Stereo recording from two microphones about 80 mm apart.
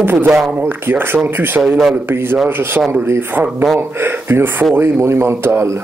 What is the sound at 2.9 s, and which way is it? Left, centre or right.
Speech, right.